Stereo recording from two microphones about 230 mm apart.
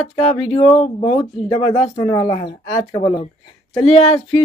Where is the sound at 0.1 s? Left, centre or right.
Left.